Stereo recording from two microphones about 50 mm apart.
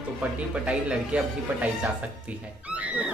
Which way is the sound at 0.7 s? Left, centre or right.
Right.